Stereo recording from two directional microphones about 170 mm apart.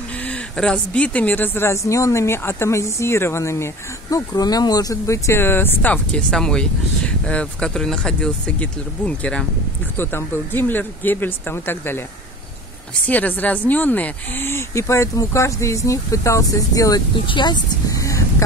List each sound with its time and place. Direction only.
0.2 s a woman's voice: 5° left (ahead or behind)
13.0 s a woman's voice: 10° left (ahead or behind)